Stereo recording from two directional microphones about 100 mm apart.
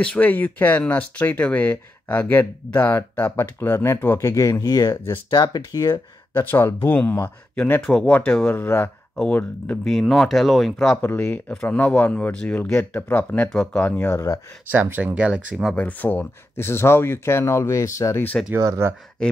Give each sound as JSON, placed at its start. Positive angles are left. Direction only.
{"t": 0.0, "sound": "speech", "side_deg": 15}
{"t": 6.3, "sound": "speech", "side_deg": 20}
{"t": 7.8, "sound": "speech", "side_deg": 5}
{"t": 9.1, "sound": "speech", "side_deg": 10}
{"t": 11.0, "sound": "speech", "side_deg": 20}
{"t": 13.8, "sound": "speech", "side_deg": 20}
{"t": 14.7, "sound": "speech", "side_deg": -20}
{"t": 15.7, "sound": "speech", "side_deg": 15}
{"t": 18.5, "sound": "speech", "side_deg": -25}